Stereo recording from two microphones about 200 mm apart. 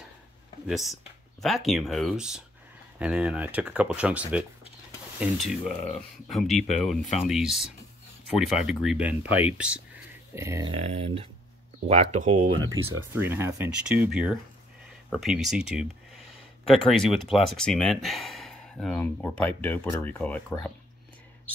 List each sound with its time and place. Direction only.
0.7 s speech: centre (ahead or behind)
10.7 s speech: 30° right (ahead or behind)
13.1 s speech: 10° right (ahead or behind); by 20.7 s 5° left (ahead or behind)